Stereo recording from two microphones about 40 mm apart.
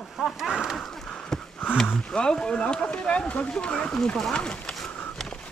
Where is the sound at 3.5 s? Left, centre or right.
Centre.